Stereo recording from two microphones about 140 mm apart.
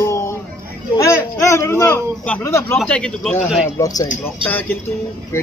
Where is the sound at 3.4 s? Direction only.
5° right (ahead or behind).